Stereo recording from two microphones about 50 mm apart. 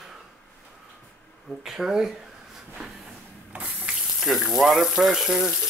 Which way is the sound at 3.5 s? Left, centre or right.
Right.